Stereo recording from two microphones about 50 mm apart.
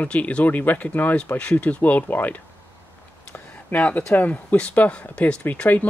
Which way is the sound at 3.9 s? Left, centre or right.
Left.